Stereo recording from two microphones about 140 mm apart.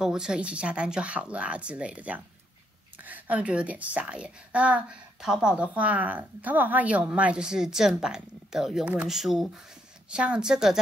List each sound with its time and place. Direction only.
0.0 s a woman's voice: 5° right (ahead or behind)